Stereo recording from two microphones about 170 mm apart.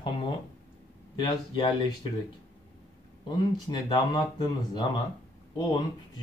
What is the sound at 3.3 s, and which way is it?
Speech, 25° left (ahead or behind).